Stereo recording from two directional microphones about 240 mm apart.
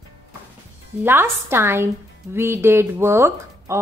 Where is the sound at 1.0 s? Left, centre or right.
Centre.